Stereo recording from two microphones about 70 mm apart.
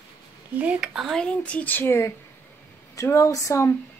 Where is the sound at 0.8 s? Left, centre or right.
Centre.